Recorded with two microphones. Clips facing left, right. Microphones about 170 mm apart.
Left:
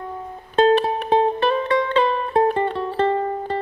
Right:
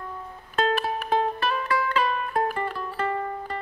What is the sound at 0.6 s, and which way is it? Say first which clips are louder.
Music: left 9 dB; 30° left (ahead or behind).